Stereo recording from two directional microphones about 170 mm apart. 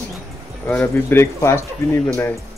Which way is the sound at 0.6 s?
10° left (ahead or behind).